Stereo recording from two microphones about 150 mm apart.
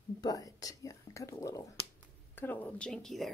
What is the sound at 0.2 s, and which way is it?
Whispering, 25° left (ahead or behind).